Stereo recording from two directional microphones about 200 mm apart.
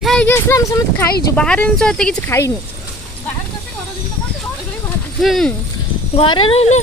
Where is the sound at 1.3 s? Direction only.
5° left (ahead or behind).